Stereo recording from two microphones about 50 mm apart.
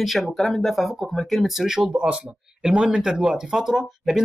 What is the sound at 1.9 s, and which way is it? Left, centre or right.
A man's voice, right.